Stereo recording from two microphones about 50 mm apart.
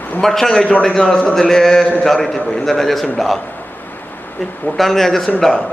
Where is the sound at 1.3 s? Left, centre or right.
Centre.